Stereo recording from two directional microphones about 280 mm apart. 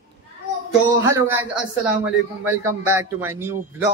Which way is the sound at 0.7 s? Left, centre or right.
Centre.